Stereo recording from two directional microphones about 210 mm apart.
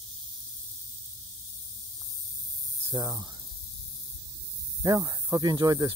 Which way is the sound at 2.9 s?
20° right (ahead or behind).